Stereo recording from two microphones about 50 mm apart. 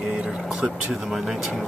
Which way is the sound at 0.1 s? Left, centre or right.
Centre.